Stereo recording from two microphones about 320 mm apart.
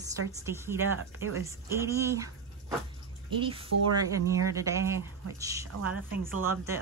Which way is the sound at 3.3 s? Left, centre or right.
Centre.